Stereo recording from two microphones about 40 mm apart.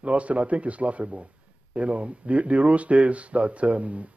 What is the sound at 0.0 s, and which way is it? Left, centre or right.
A man's voice, right.